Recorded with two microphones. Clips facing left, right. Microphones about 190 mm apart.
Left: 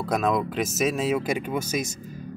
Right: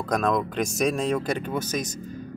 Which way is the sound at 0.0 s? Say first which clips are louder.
Even; 5° left (ahead or behind).